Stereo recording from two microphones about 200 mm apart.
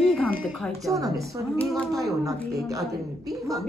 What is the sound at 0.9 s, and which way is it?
Speech, 15° right (ahead or behind).